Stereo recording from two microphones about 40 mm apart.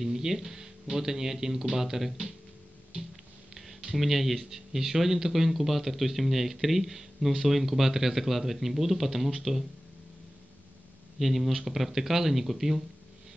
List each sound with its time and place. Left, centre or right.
0.0 s speech: centre
3.9 s speech: centre
11.1 s speech: centre